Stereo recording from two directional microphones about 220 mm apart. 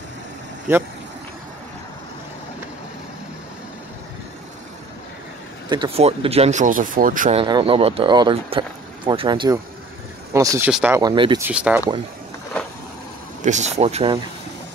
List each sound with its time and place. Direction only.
5.7 s speech: 25° right (ahead or behind)
7.4 s speech: 20° right (ahead or behind); by 11.0 s 5° right (ahead or behind)
11.0 s speech: 20° right (ahead or behind)
11.4 s speech: 5° right (ahead or behind)
13.4 s speech: 30° right (ahead or behind)